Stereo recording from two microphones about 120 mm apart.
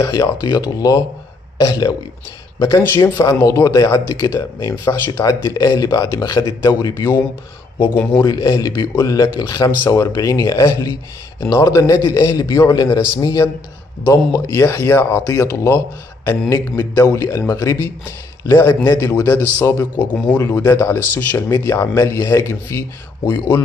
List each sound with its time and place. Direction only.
0.0 s a man's voice: 30° left (ahead or behind)
3.0 s a man's voice: 30° left (ahead or behind)
7.8 s a man's voice: 15° left (ahead or behind)
8.2 s a man's voice: 30° left (ahead or behind)